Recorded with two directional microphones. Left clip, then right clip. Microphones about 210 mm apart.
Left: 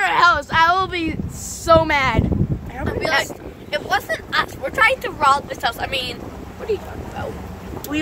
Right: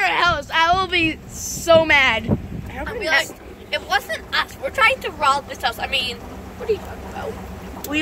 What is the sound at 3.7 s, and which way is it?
Speech, 30° left (ahead or behind).